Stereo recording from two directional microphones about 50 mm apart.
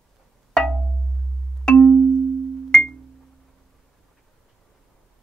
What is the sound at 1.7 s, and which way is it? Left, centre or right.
Music, centre.